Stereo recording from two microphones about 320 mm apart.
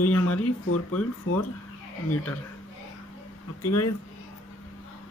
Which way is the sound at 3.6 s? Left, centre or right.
Left.